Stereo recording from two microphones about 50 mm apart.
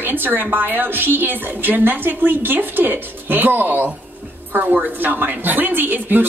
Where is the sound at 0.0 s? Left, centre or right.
Right.